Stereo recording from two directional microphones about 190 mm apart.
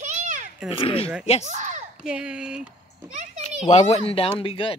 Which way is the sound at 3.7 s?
35° left (ahead or behind).